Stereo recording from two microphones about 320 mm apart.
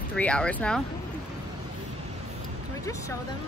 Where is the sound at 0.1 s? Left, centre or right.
Centre.